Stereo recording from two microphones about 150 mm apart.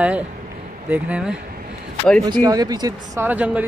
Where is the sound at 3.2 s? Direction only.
10° right (ahead or behind).